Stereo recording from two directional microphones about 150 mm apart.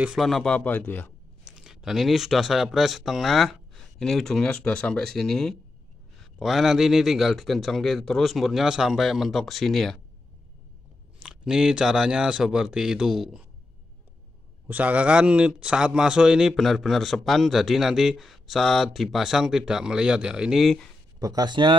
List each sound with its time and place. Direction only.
0.0 s speech: centre (ahead or behind)
1.4 s a man's voice: 5° right (ahead or behind)
11.1 s a man's voice: 5° right (ahead or behind)
14.7 s a man's voice: 10° right (ahead or behind)
21.2 s speech: 25° right (ahead or behind)